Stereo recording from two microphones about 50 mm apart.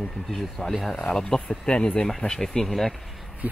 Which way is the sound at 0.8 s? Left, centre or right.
Centre.